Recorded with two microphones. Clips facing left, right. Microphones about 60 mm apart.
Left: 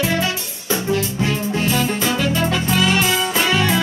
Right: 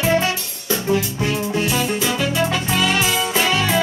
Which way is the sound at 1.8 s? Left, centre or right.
Centre.